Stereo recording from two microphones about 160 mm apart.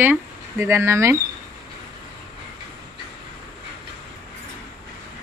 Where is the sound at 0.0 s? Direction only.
15° right (ahead or behind).